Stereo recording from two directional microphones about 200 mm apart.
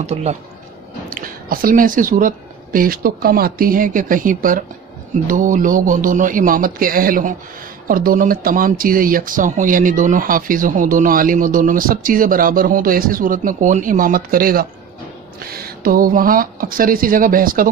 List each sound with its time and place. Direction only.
0.0 s a man's voice: 35° right (ahead or behind)
1.1 s speech: 45° right (ahead or behind)